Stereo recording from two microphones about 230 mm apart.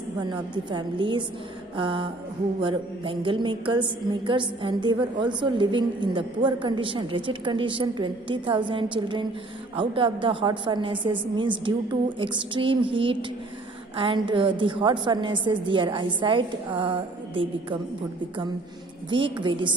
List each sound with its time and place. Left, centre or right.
0.2 s a woman's voice: centre
19.0 s a woman's voice: right